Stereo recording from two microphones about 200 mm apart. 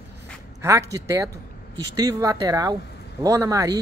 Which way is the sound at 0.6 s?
15° right (ahead or behind).